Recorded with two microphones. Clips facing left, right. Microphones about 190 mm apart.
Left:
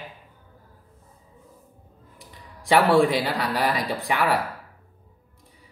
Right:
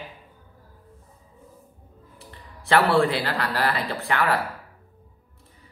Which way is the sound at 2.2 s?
15° left (ahead or behind).